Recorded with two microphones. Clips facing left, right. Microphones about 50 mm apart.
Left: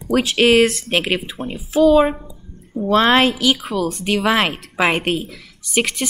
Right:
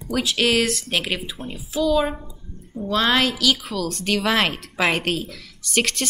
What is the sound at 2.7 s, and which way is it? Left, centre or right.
A woman's voice, left.